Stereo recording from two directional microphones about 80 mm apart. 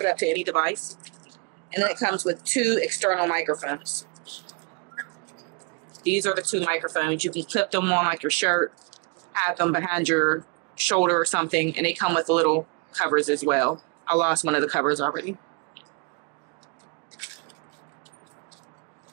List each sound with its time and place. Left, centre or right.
0.0 s speech: centre
6.0 s speech: centre